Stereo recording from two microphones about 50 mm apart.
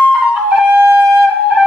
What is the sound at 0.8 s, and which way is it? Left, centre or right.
Wind instrument, right.